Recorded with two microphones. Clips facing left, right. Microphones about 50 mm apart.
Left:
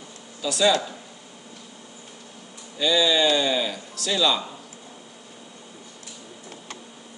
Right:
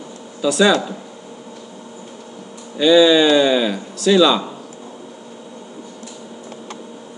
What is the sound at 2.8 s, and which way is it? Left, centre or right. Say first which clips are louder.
A man's voice: right 9 dB; right.